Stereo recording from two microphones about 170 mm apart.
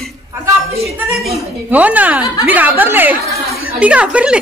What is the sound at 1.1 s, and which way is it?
A woman's voice, centre (ahead or behind).